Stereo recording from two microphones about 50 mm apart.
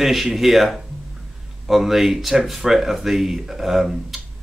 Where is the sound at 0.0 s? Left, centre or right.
Centre.